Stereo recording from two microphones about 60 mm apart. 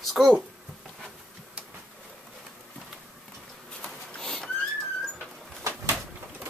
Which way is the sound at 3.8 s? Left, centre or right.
Centre.